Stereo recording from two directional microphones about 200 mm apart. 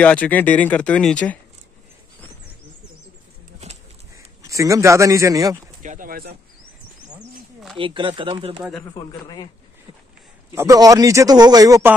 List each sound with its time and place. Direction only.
0.0 s speech: 5° left (ahead or behind)
3.6 s horse: 35° right (ahead or behind)
4.5 s speech: 15° right (ahead or behind)
5.8 s speech: 40° right (ahead or behind)
7.7 s speech: 25° right (ahead or behind)
10.5 s speech: 15° right (ahead or behind)